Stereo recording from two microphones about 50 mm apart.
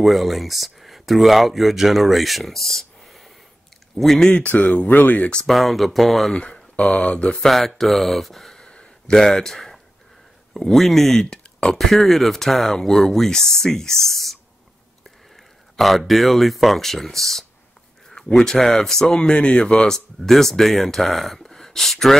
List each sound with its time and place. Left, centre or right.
0.0 s speech: centre
4.2 s speech: left
5.5 s speech: centre
6.3 s speech: centre
7.4 s speech: centre
8.6 s a sound: centre
10.5 s speech: centre
15.7 s speech: centre
20.2 s speech: centre